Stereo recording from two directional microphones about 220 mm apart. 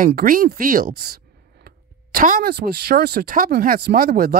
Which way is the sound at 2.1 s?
40° right (ahead or behind).